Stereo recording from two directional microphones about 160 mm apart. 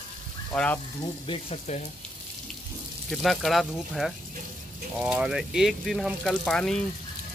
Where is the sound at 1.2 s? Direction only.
35° left (ahead or behind).